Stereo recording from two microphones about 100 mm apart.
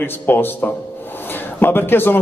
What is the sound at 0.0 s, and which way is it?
A man's voice, 20° left (ahead or behind).